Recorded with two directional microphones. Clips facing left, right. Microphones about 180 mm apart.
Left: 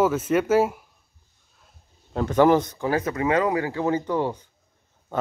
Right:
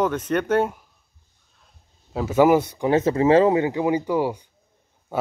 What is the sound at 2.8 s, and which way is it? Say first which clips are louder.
Speech: right 8 dB; 25° right (ahead or behind).